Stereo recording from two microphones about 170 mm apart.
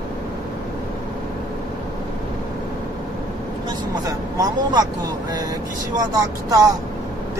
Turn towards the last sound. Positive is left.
turn(degrees=-20)  # may be behind; listen again after turning